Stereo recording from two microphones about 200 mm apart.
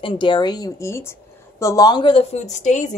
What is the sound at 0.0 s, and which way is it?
Speech, 25° left (ahead or behind).